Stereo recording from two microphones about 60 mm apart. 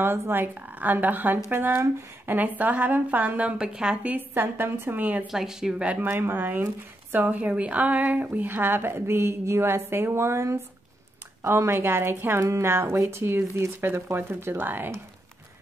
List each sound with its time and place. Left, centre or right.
0.0 s a woman's voice: right
3.5 s speech: centre
4.3 s speech: right
5.3 s speech: centre
5.9 s speech: right
14.3 s speech: right